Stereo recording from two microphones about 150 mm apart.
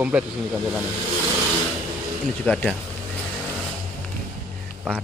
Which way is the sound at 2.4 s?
10° left (ahead or behind).